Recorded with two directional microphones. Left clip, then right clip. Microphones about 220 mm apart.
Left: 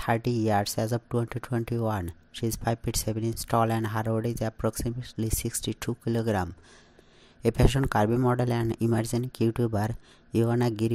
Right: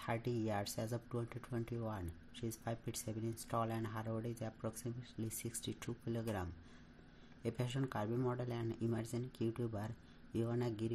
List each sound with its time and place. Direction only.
0.0 s speech: 40° left (ahead or behind)